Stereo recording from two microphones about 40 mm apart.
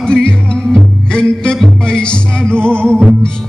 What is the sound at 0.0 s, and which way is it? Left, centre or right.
Music, centre.